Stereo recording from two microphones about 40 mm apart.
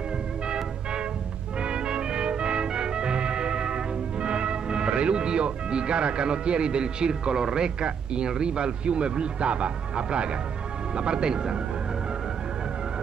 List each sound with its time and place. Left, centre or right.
1.6 s music: right
11.0 s speech: right